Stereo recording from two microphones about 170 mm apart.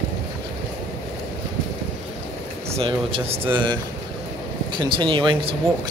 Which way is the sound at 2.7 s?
35° right (ahead or behind).